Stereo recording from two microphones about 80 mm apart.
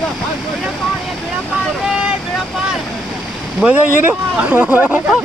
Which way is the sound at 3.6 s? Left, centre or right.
Centre.